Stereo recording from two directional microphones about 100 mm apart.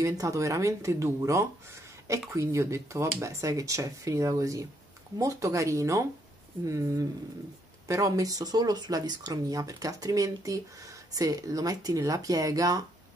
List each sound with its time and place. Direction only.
0.0 s speech: 35° right (ahead or behind)